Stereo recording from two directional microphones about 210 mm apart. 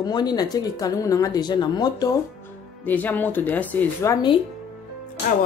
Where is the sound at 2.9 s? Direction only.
10° left (ahead or behind).